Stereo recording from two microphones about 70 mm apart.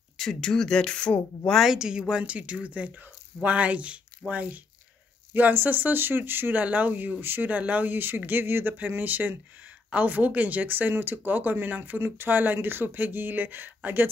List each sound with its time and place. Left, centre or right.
0.2 s speech: centre
1.5 s speech: centre
1.8 s speech: centre; by 13.7 s right